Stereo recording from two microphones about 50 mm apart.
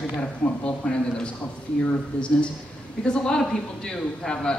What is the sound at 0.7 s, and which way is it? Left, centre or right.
Speech, centre.